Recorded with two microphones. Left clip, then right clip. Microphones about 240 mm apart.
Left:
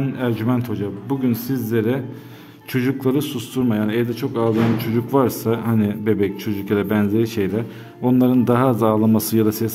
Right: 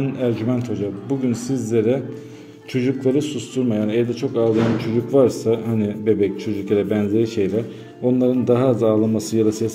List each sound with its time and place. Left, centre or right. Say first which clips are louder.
0.0 s a man's voice: right 1 dB; centre